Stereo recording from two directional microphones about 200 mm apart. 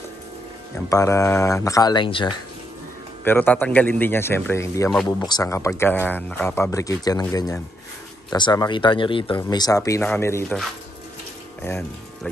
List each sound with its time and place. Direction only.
0.8 s speech: 15° left (ahead or behind)
3.3 s speech: 10° left (ahead or behind)
11.6 s speech: 10° left (ahead or behind)